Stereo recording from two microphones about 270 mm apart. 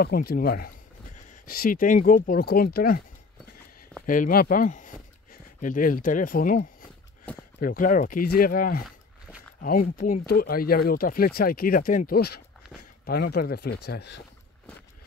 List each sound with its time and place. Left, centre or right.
0.0 s speech: left
4.0 s speech: left
7.3 s speech: centre
7.6 s speech: left